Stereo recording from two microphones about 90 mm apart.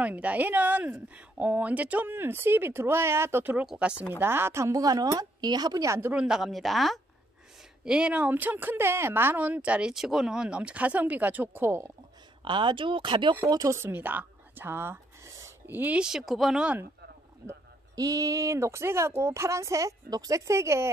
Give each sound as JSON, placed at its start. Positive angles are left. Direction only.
{"t": 0.0, "sound": "speech", "side_deg": -15}
{"t": 3.6, "sound": "speech", "side_deg": -10}
{"t": 3.9, "sound": "speech", "side_deg": 35}
{"t": 4.2, "sound": "speech", "side_deg": -25}
{"t": 4.8, "sound": "a woman's voice", "side_deg": -45}
{"t": 5.9, "sound": "speech", "side_deg": -25}
{"t": 6.1, "sound": "a woman's voice", "side_deg": -5}
{"t": 7.8, "sound": "speech", "side_deg": -10}
{"t": 12.4, "sound": "speech", "side_deg": -65}
{"t": 13.5, "sound": "a woman's voice", "side_deg": -45}
{"t": 13.7, "sound": "a woman's voice", "side_deg": -25}
{"t": 16.0, "sound": "a woman's voice", "side_deg": -5}
{"t": 17.5, "sound": "speech", "side_deg": -40}